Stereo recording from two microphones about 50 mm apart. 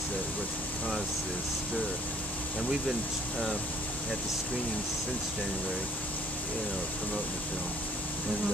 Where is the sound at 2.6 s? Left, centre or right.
Centre.